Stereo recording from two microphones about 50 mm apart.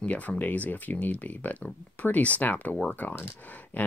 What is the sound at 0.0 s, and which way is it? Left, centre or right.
Speech, left.